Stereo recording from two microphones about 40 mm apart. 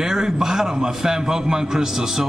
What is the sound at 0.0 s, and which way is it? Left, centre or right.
A man's voice, centre.